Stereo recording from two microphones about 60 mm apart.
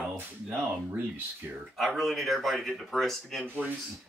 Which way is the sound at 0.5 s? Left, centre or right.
Right.